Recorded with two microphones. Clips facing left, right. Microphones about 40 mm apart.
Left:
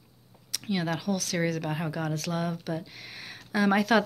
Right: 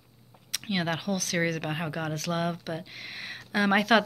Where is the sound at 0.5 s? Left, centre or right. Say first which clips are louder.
Even; right.